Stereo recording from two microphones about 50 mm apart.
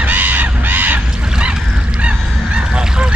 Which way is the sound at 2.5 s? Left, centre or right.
Centre.